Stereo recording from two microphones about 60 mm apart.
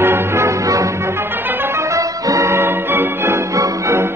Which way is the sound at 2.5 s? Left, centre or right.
Right.